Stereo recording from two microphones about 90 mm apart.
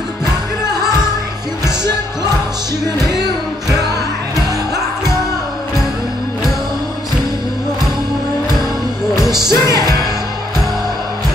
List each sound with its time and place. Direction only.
9.1 s music: 5° right (ahead or behind)
9.5 s music: 40° left (ahead or behind)